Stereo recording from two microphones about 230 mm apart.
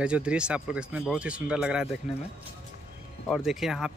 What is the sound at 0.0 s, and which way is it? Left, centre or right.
Speech, centre.